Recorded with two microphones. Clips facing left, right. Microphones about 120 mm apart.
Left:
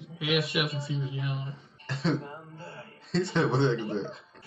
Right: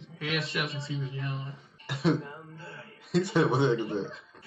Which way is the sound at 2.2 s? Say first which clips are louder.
Left 1 dB; 30° left (ahead or behind).